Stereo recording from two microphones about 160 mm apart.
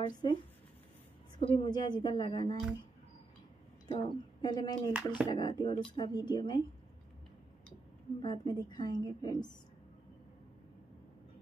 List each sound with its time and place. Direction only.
0.0 s a woman's voice: 30° left (ahead or behind)
1.4 s a woman's voice: 30° left (ahead or behind)
3.8 s a woman's voice: 25° left (ahead or behind)
8.2 s a woman's voice: 30° left (ahead or behind)